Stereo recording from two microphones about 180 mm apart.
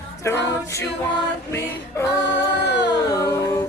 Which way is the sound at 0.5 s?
15° left (ahead or behind).